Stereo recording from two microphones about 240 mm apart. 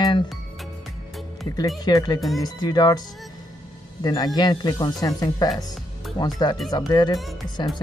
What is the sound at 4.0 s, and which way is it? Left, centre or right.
A man's voice, centre.